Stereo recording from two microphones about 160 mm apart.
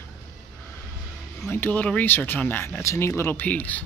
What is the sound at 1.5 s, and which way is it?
Speech, 10° left (ahead or behind).